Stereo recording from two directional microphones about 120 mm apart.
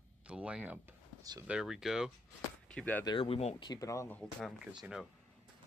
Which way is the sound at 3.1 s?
50° left (ahead or behind).